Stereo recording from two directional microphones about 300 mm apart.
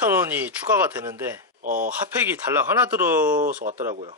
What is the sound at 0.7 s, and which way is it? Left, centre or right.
Speech, centre.